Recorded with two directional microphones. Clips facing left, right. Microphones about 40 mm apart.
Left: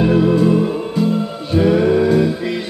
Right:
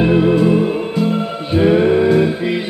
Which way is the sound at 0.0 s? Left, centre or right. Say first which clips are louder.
Right 1 dB; right.